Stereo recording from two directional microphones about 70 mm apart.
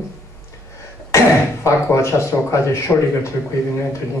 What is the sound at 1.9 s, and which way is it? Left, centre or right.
Speech, left.